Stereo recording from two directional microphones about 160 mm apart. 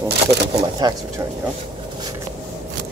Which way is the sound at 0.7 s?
25° right (ahead or behind).